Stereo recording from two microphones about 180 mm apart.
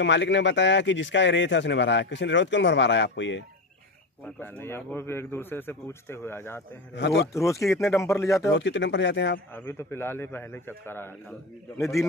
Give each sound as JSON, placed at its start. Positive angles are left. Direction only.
{"t": 0.0, "sound": "a man's voice", "side_deg": 80}
{"t": 4.4, "sound": "a man's voice", "side_deg": 10}
{"t": 7.0, "sound": "a man's voice", "side_deg": 80}
{"t": 7.3, "sound": "a man's voice", "side_deg": 15}
{"t": 8.5, "sound": "a man's voice", "side_deg": 85}
{"t": 9.5, "sound": "a man's voice", "side_deg": 10}